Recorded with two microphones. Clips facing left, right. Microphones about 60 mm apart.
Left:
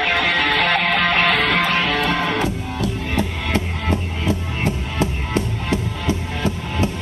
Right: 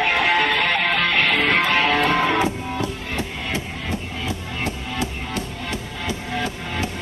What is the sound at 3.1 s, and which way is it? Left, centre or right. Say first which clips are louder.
Music: left 4 dB; left.